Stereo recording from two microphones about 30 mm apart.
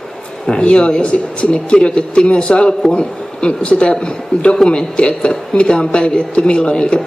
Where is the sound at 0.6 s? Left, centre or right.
Left.